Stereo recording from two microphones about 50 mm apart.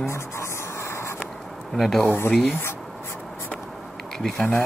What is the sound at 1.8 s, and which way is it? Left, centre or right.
Speech, centre.